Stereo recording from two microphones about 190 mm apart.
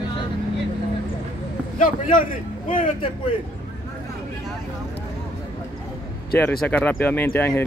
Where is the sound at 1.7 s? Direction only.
45° left (ahead or behind).